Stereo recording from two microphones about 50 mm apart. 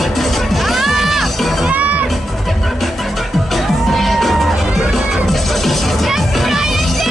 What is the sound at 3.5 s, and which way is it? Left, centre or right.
Music, centre.